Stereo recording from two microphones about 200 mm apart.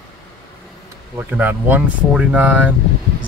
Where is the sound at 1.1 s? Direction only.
10° right (ahead or behind).